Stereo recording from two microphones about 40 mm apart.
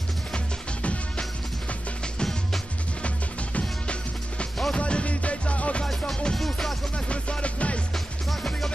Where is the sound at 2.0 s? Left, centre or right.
Centre.